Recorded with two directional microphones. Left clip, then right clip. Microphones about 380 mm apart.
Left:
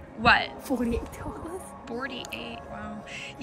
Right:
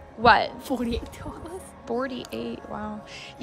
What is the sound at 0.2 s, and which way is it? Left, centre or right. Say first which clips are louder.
A woman's voice: right 3 dB; centre.